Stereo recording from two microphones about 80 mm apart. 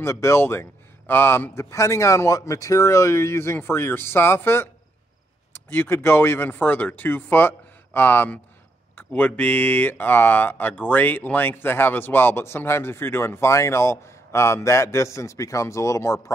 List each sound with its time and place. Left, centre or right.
0.0 s a man's voice: left